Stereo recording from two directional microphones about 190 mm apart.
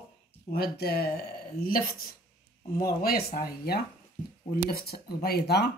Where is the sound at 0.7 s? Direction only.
60° left (ahead or behind).